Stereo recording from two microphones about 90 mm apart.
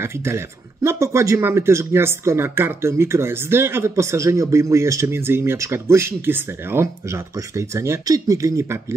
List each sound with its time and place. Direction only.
0.0 s speech: 30° right (ahead or behind)